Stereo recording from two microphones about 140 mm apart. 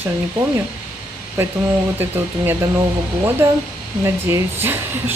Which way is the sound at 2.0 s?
15° right (ahead or behind).